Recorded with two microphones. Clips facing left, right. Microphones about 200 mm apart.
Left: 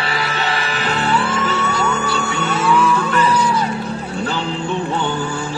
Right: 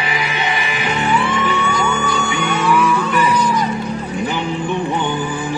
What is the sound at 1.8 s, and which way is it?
Music, 5° left (ahead or behind).